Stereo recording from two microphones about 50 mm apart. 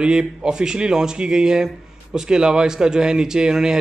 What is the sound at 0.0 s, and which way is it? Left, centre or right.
Speech, centre.